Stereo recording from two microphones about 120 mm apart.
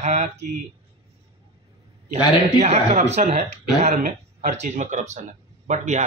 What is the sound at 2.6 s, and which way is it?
Speech, 65° right (ahead or behind).